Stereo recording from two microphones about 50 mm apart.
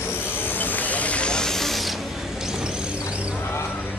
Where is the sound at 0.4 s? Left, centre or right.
Left; by 2.0 s centre.